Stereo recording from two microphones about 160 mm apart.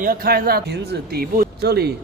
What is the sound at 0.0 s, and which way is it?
A man's voice, 65° right (ahead or behind).